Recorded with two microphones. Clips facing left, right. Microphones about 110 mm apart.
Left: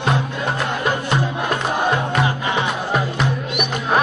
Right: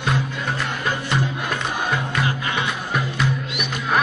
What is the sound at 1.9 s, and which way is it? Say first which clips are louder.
Music: left 4 dB; 30° left (ahead or behind).